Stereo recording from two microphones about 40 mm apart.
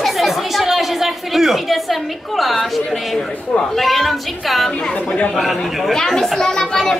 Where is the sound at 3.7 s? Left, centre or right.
Centre.